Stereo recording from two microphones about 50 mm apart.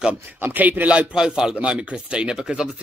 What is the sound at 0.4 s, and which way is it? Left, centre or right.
Speech, right.